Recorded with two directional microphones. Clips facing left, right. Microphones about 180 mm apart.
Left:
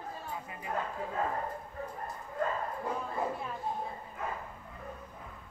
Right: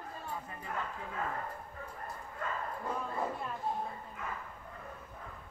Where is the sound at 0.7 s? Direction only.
35° left (ahead or behind).